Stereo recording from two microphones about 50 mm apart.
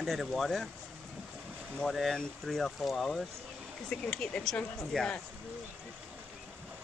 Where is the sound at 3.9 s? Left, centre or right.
Centre.